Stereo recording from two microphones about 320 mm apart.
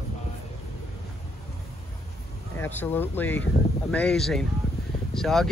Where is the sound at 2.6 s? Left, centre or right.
Centre.